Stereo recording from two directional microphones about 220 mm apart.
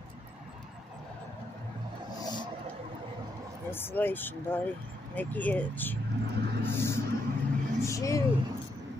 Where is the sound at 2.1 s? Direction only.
20° left (ahead or behind).